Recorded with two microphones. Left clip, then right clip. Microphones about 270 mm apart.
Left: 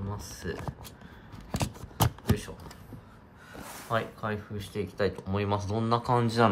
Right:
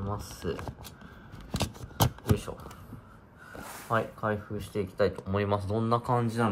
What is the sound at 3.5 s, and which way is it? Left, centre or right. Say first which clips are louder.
Speech: right 1 dB; centre.